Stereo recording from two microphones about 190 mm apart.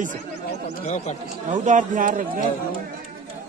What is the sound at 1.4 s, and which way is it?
Speech, 40° right (ahead or behind).